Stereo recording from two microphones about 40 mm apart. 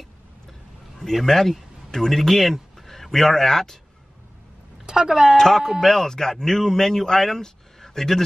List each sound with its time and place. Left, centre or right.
1.1 s speech: centre
4.8 s speech: centre
5.4 s speech: centre